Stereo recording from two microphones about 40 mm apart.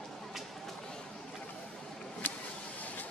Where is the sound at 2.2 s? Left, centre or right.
Left.